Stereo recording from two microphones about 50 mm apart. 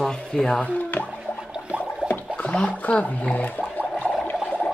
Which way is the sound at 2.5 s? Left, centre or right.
Left.